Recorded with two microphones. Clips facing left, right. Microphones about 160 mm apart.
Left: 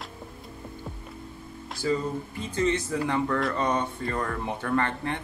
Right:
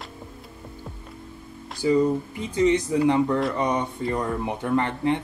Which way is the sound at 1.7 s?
15° right (ahead or behind).